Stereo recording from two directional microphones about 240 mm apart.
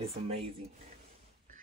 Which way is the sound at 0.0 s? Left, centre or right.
Right.